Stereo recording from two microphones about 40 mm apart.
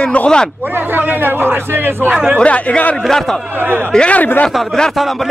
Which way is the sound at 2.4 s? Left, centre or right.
Left.